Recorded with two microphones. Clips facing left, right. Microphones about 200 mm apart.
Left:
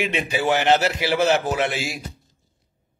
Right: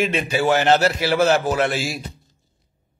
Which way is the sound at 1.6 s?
40° right (ahead or behind).